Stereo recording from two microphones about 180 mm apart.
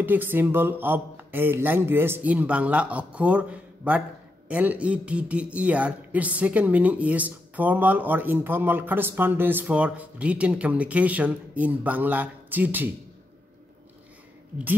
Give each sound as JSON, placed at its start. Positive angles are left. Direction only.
{"t": 0.0, "sound": "speech", "side_deg": -10}